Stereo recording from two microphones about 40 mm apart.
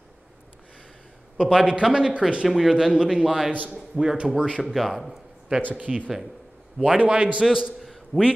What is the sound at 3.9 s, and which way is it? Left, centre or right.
Speech, centre.